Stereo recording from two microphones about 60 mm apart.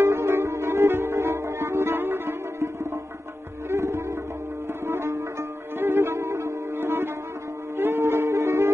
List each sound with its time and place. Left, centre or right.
0.0 s music: right
3.7 s music: right
4.8 s sitar: right
5.8 s music: right